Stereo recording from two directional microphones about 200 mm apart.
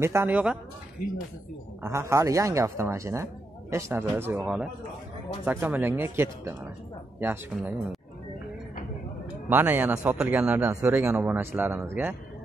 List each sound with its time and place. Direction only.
0.0 s a man's voice: 10° right (ahead or behind)
1.8 s a man's voice: 15° right (ahead or behind)
9.5 s a man's voice: 10° right (ahead or behind)